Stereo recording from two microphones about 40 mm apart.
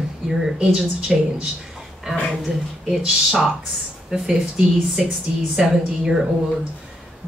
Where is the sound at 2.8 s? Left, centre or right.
Centre.